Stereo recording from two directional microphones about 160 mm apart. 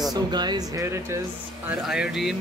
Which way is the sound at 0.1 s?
25° right (ahead or behind).